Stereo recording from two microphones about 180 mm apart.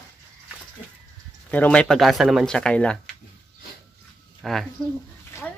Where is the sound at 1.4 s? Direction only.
10° left (ahead or behind).